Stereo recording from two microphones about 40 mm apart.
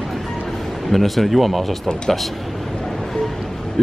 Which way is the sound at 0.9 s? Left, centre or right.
Centre.